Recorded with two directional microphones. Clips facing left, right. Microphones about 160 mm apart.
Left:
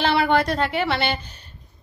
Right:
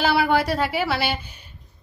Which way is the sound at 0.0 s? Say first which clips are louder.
Even; 5° right (ahead or behind).